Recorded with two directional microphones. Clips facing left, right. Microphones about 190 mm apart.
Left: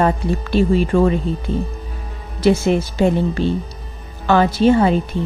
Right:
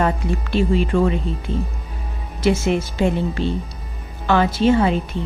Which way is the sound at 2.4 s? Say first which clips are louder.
Left 3 dB; 35° left (ahead or behind).